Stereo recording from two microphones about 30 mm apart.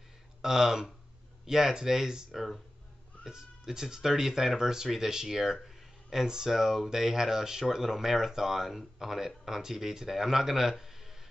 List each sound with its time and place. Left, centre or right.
0.4 s speech: centre
2.3 s speech: centre
3.3 s speech: right
6.2 s speech: right
6.5 s speech: centre